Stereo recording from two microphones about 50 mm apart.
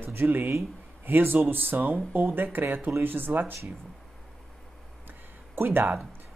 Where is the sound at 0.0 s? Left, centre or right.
Right.